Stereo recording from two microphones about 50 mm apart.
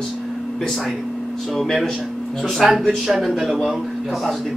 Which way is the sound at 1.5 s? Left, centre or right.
Centre.